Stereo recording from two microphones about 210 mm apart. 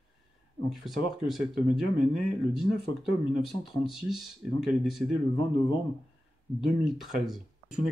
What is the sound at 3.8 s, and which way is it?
Speech, centre (ahead or behind).